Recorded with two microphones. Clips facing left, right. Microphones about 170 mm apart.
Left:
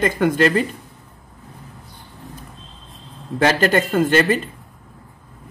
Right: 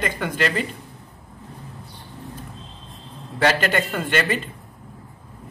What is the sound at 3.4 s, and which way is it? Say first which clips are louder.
Speech: left 4 dB; 40° left (ahead or behind).